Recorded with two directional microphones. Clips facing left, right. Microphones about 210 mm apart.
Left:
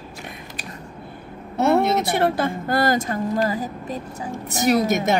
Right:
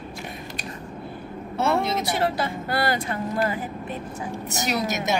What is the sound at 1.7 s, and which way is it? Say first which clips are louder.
A woman's voice: left 5 dB; 55° left (ahead or behind).